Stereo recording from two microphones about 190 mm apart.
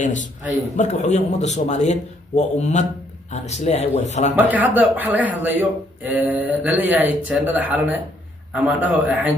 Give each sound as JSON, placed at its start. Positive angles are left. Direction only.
{"t": 0.7, "sound": "a man's voice", "side_deg": 40}
{"t": 4.4, "sound": "a man's voice", "side_deg": -10}